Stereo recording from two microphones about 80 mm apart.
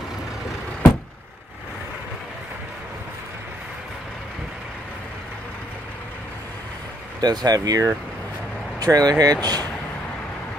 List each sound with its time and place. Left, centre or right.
7.2 s speech: right